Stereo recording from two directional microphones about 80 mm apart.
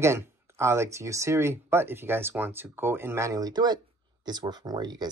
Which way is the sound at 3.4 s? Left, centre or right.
Right.